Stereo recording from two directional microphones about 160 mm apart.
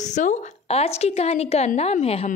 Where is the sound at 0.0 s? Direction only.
50° left (ahead or behind).